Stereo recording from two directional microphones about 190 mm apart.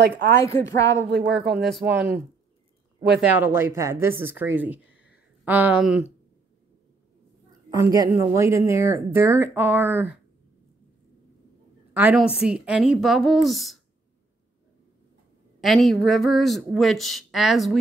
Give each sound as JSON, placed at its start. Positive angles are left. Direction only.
{"t": 0.4, "sound": "speech", "side_deg": 15}
{"t": 1.1, "sound": "speech", "side_deg": -60}
{"t": 1.7, "sound": "speech", "side_deg": 0}
{"t": 3.2, "sound": "speech", "side_deg": -10}
{"t": 7.8, "sound": "a woman's voice", "side_deg": -15}
{"t": 11.9, "sound": "speech", "side_deg": -10}
{"t": 15.6, "sound": "speech", "side_deg": 0}